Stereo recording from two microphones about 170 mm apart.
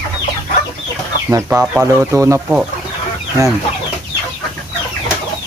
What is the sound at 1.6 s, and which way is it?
Speech, 5° right (ahead or behind).